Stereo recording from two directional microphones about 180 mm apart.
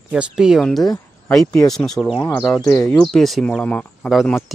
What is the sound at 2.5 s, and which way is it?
Speech, 20° left (ahead or behind).